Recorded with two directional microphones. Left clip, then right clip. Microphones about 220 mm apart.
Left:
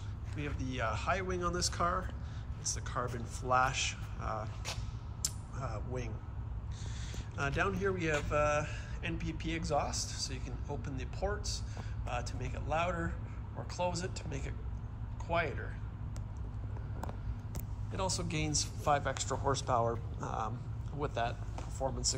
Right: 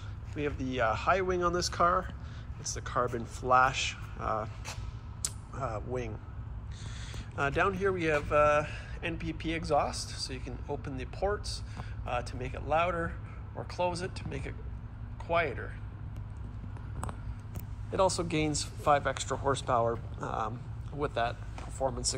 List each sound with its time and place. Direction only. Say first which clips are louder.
0.3 s speech: right 7 dB; centre (ahead or behind)
5.2 s a sound: right 4 dB; 5° left (ahead or behind)
7.1 s speech: right 6 dB; 5° left (ahead or behind)
17.9 s speech: right 9 dB; centre (ahead or behind)